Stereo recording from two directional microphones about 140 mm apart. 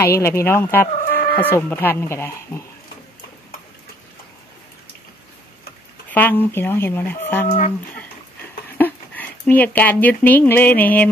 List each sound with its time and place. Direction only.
0.0 s speech: 20° left (ahead or behind)
6.0 s speech: 10° left (ahead or behind)
7.4 s speech: 60° left (ahead or behind)
8.7 s speech: 15° left (ahead or behind)